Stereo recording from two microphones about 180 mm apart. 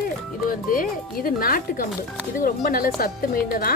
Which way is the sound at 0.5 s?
50° left (ahead or behind).